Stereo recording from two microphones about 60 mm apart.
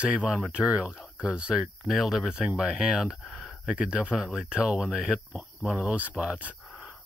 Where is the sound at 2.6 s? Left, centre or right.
Centre.